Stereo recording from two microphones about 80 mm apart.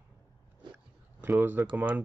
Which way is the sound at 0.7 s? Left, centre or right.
Right.